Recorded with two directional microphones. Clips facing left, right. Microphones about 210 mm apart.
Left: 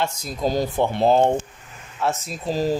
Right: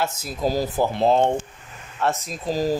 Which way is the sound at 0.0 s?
5° right (ahead or behind).